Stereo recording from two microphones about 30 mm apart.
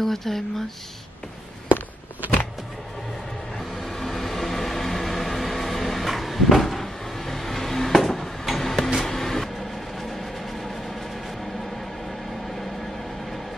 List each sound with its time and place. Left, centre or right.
0.0 s speech: centre
2.2 s power windows: right
3.8 s vehicle: centre
8.5 s a sound: centre
9.0 s music: centre